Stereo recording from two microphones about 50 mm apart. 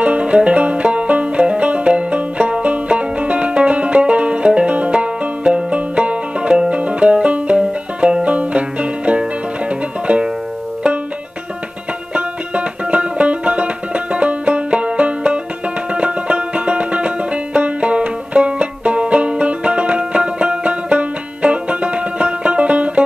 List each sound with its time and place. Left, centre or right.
0.0 s music: right
12.1 s music: right